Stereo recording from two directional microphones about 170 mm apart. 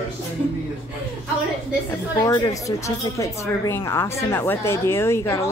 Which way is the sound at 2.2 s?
20° left (ahead or behind).